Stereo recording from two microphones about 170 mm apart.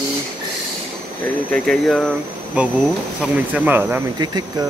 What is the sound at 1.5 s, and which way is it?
Speech, 5° left (ahead or behind).